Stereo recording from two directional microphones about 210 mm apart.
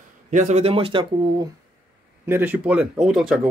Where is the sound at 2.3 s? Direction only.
10° right (ahead or behind).